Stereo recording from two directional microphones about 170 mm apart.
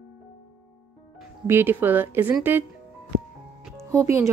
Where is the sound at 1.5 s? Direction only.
10° right (ahead or behind).